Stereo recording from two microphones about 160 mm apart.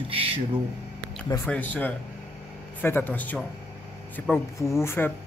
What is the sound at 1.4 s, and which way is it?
Speech, 10° left (ahead or behind).